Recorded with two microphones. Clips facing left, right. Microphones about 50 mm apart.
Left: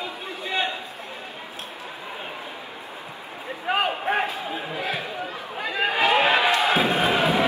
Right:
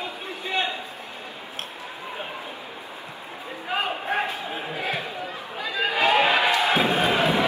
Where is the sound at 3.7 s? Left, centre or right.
Left.